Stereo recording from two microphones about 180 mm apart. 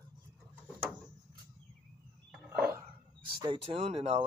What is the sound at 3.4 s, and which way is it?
Speech, 30° right (ahead or behind).